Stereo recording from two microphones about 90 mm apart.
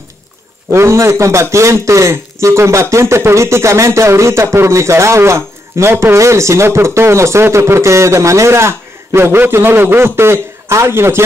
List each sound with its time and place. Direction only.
0.7 s a man's voice: 30° right (ahead or behind)